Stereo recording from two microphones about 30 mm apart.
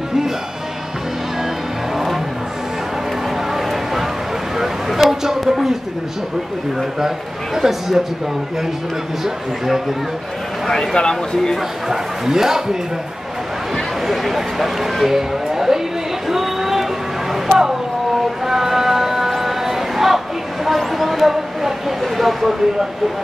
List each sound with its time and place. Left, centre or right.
3.5 s a sound: centre
7.5 s speech: centre
10.7 s speech: centre
11.0 s speech: left
11.9 s speech: centre
14.0 s speech: centre
16.3 s a sound: centre
17.3 s vehicle: centre
18.4 s music: centre
20.6 s a sound: centre
22.0 s speech: centre